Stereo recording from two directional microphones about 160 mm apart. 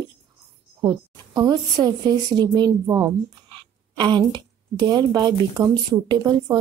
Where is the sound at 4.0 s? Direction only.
25° right (ahead or behind).